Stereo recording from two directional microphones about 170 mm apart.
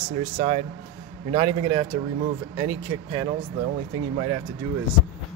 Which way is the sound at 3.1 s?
25° right (ahead or behind).